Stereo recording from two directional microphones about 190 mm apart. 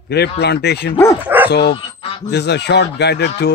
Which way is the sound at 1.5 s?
60° left (ahead or behind).